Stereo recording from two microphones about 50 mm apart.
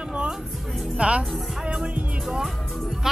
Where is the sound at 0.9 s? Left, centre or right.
Right.